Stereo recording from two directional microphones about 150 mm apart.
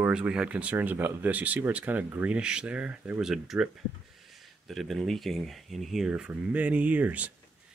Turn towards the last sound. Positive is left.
turn(degrees=-10)  # may be behind; listen again after turning